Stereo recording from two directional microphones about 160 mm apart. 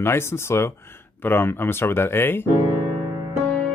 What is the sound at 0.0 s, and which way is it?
Speech, 15° left (ahead or behind).